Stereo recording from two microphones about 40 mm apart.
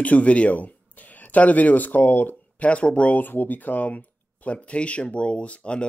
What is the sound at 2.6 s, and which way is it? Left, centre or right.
Speech, left.